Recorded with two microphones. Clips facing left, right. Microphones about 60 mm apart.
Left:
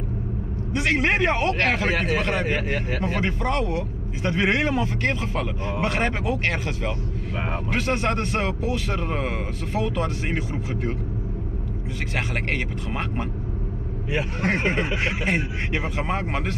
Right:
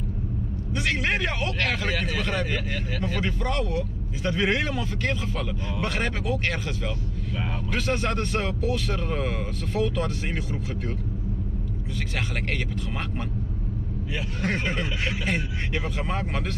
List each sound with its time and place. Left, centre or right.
0.7 s speech: left
12.4 s speech: left